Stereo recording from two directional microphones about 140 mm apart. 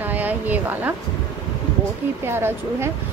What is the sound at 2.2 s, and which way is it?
Speech, 15° right (ahead or behind).